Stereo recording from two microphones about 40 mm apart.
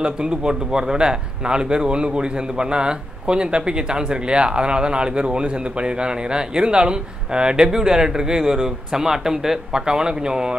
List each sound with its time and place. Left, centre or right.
0.0 s speech: right